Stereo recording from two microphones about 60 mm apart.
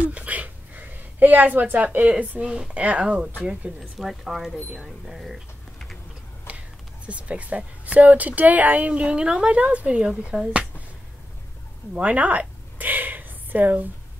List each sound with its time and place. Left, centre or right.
0.1 s a woman's voice: right
4.0 s speech: centre
7.1 s a woman's voice: right
11.9 s a sound: right